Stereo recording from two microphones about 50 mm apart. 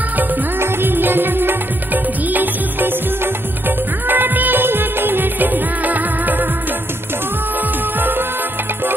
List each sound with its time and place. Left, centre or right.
0.6 s music: right
3.6 s music of bollywood: right